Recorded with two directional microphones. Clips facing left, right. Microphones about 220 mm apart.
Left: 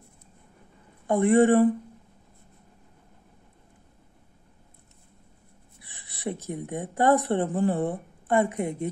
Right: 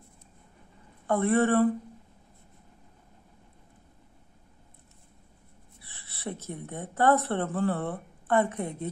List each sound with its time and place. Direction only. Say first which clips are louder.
1.0 s speech: left 5 dB; 15° left (ahead or behind)
5.8 s speech: left 2 dB; 15° left (ahead or behind)